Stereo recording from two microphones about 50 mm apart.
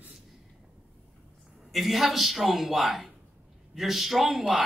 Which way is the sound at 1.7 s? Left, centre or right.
Centre.